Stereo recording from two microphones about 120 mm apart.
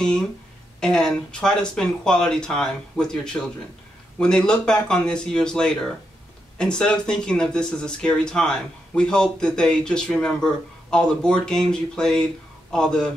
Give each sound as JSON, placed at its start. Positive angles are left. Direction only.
{"t": 0.7, "sound": "speech", "side_deg": 5}